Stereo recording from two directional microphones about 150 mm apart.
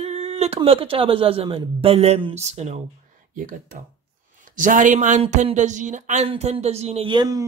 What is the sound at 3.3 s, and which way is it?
Speech, 60° right (ahead or behind).